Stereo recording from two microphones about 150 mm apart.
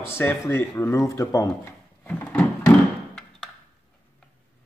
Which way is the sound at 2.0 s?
10° left (ahead or behind).